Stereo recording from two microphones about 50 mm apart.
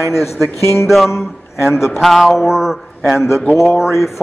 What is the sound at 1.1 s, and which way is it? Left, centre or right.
Speech, left.